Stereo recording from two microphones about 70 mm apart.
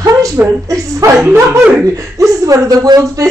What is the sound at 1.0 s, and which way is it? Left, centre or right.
Speech, right.